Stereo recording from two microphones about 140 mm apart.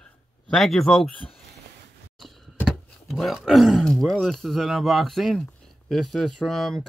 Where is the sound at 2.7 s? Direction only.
Centre (ahead or behind).